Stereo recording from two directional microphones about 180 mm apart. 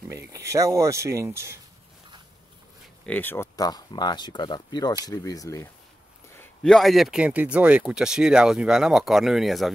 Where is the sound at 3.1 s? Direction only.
10° left (ahead or behind).